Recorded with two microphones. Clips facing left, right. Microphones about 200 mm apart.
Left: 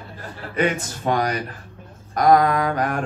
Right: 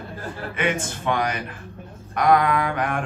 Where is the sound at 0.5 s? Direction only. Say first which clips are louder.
Left 4 dB; 35° left (ahead or behind).